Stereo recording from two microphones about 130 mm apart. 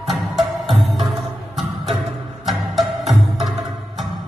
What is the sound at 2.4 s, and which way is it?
Music, centre (ahead or behind).